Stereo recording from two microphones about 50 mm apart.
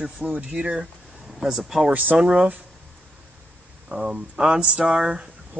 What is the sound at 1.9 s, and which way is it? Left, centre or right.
Speech, right.